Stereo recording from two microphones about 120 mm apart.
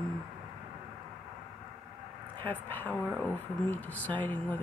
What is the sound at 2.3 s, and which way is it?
Speech, 15° left (ahead or behind).